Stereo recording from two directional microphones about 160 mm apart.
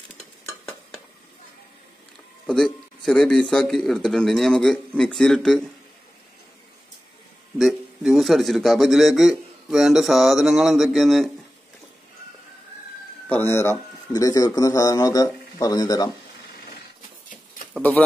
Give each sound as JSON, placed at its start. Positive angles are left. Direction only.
{"t": 2.4, "sound": "speech", "side_deg": 5}
{"t": 7.5, "sound": "a man's voice", "side_deg": 0}
{"t": 13.3, "sound": "speech", "side_deg": 15}